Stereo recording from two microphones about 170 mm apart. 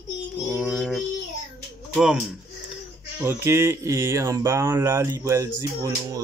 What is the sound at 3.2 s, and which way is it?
Speech, 15° right (ahead or behind).